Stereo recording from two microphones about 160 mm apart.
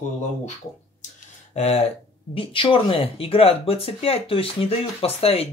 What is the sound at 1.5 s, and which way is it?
Speech, 40° left (ahead or behind).